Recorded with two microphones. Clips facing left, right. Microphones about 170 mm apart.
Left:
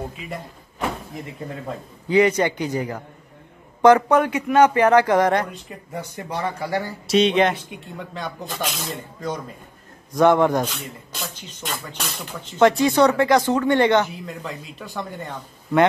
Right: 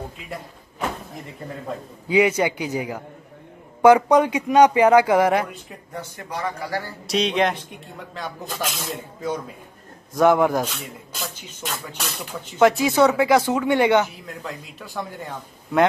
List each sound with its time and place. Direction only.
0.2 s speech: centre (ahead or behind)
2.0 s speech: 10° right (ahead or behind)
5.9 s speech: 25° left (ahead or behind)
7.1 s speech: centre (ahead or behind)